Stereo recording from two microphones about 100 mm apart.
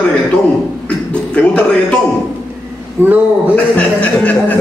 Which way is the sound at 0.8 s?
10° left (ahead or behind).